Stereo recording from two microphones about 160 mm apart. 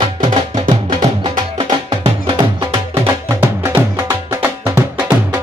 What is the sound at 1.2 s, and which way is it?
Music, 30° right (ahead or behind).